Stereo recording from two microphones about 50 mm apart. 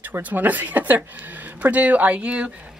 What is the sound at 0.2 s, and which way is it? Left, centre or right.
Speech, right.